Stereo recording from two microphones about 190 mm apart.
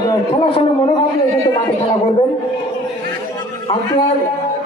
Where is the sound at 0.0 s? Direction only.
20° left (ahead or behind).